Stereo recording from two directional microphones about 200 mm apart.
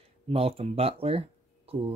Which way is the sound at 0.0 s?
30° right (ahead or behind).